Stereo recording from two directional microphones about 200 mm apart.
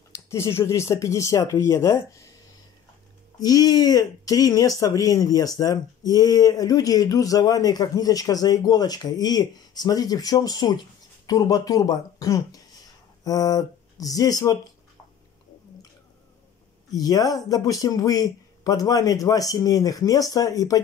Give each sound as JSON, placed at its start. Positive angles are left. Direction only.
{"t": 0.3, "sound": "speech", "side_deg": 15}
{"t": 3.3, "sound": "speech", "side_deg": 20}
{"t": 16.9, "sound": "speech", "side_deg": 20}